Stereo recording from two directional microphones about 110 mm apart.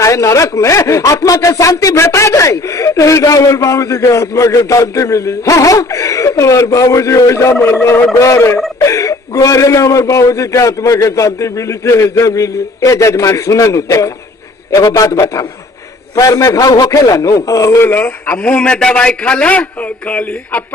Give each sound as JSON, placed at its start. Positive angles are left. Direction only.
{"t": 0.0, "sound": "speech", "side_deg": 30}